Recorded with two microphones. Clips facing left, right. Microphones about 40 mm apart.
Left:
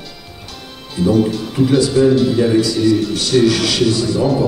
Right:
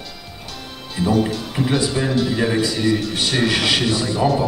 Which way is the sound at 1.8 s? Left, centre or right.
Centre.